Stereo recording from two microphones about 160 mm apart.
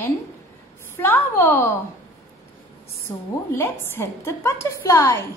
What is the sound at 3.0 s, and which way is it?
A woman's voice, 15° left (ahead or behind).